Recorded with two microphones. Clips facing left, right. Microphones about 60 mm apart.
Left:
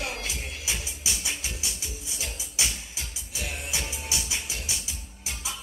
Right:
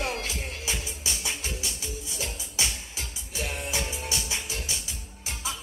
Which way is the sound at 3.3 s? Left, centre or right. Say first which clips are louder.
Right 3 dB; right.